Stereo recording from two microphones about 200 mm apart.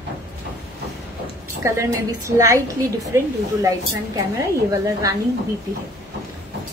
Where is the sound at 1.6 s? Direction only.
15° right (ahead or behind).